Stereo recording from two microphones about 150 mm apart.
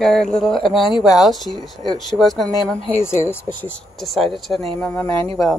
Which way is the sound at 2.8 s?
45° left (ahead or behind).